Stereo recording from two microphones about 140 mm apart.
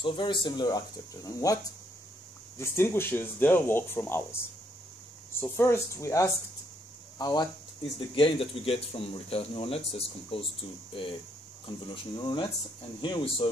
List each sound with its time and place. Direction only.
0.0 s speech: 35° left (ahead or behind)
2.6 s speech: 20° left (ahead or behind)
8.1 s speech: 40° left (ahead or behind)